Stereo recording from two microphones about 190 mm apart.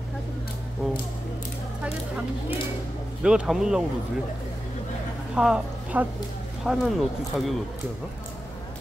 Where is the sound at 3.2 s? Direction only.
5° right (ahead or behind).